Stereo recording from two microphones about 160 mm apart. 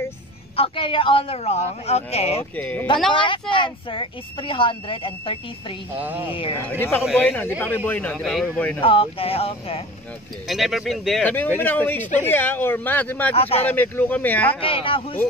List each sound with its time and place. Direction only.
0.6 s speech: 35° left (ahead or behind)
2.5 s speech: 10° left (ahead or behind)
3.1 s speech: 30° left (ahead or behind)
5.9 s speech: 10° right (ahead or behind)
6.8 s speech: 15° left (ahead or behind)
8.8 s speech: 35° left (ahead or behind)
10.5 s speech: centre (ahead or behind)
11.2 s speech: 10° left (ahead or behind)
13.3 s speech: 40° left (ahead or behind)
13.7 s speech: 10° left (ahead or behind)
14.6 s speech: 35° left (ahead or behind)